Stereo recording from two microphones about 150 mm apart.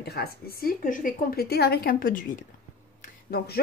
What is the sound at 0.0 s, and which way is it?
A woman's voice, 90° left.